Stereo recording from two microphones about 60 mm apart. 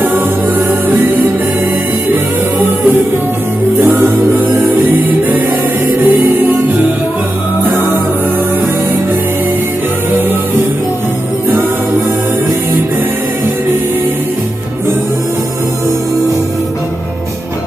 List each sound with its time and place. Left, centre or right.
0.1 s music: right
4.0 s music: right